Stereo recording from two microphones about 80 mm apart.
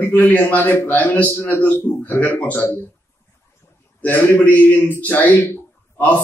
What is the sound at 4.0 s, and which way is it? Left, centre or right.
A man's voice, left.